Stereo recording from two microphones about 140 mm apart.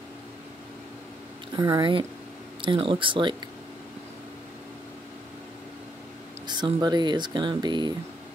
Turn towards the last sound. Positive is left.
turn(degrees=-30)  # may be behind; listen again after turning